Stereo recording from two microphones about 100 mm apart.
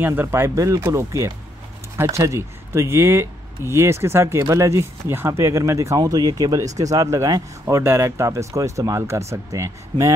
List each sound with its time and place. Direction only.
0.0 s speech: 20° right (ahead or behind)